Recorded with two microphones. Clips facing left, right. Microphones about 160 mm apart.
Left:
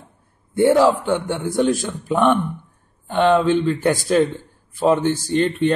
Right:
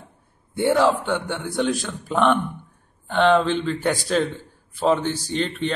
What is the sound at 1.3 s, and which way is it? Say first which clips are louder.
Speech: left 6 dB; 45° left (ahead or behind).